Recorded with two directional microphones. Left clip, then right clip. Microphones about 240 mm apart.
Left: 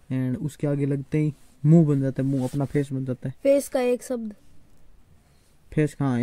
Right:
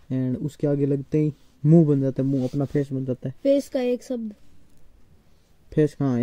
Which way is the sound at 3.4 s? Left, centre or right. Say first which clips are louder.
Left 1 dB; left.